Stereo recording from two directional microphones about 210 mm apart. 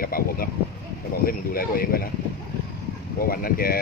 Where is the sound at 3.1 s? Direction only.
45° left (ahead or behind).